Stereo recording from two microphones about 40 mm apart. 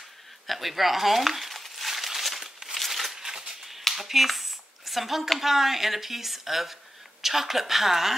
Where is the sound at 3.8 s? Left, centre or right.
Centre.